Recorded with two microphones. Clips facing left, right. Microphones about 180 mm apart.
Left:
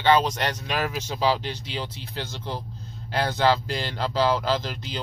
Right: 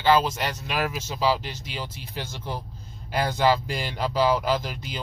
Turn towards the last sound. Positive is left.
turn(degrees=-10)  # may be behind; listen again after turning